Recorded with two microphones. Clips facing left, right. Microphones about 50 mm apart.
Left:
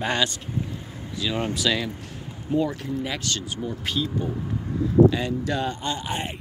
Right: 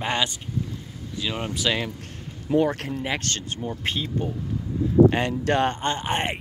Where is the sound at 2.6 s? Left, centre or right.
Right.